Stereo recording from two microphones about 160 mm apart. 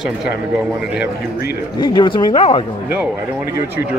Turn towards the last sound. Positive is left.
turn(degrees=-15)  # may be behind; listen again after turning